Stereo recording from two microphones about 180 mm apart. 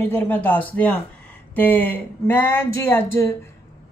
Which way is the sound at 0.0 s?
10° left (ahead or behind).